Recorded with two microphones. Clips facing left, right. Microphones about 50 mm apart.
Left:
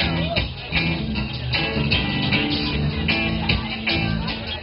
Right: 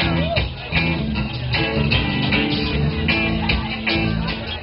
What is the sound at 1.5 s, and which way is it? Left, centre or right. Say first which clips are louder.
Music: right 2 dB; centre.